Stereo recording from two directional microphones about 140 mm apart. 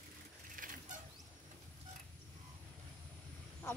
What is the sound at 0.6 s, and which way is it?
Mechanisms, 75° right (ahead or behind).